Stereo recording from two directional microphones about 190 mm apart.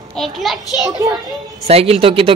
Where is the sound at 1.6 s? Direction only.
30° right (ahead or behind).